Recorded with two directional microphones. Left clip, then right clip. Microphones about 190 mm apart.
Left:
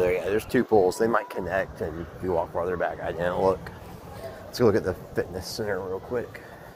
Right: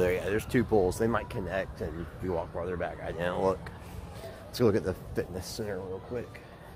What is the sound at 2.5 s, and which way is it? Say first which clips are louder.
Speech: left 7 dB; 15° right (ahead or behind).